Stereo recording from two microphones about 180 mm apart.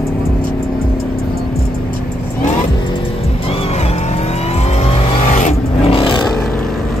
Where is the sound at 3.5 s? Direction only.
35° left (ahead or behind).